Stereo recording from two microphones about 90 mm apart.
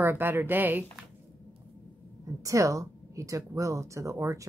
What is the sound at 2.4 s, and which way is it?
A woman's voice, 35° right (ahead or behind).